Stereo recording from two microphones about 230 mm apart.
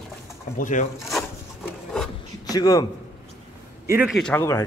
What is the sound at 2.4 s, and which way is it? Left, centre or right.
Speech, centre.